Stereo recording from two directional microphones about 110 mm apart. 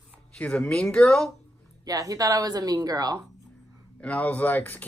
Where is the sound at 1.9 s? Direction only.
35° right (ahead or behind).